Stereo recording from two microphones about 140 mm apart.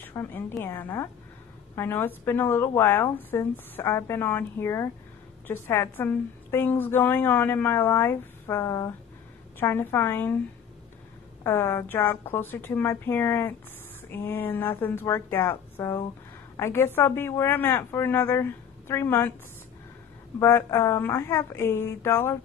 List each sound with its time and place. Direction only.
0.0 s a woman's voice: 15° left (ahead or behind)
11.4 s a woman's voice: 15° left (ahead or behind)
20.3 s a woman's voice: 20° left (ahead or behind)